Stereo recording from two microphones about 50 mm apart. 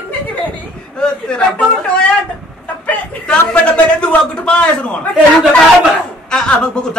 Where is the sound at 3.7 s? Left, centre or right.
Left.